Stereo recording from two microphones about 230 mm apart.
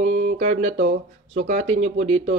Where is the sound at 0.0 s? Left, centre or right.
Right.